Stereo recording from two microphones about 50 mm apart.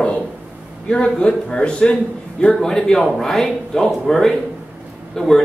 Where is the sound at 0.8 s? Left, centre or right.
Centre.